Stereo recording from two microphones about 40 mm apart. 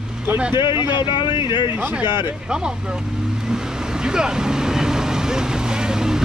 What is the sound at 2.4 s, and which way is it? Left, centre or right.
Vehicle, centre.